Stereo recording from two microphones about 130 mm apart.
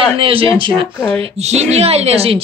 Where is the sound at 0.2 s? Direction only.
45° right (ahead or behind).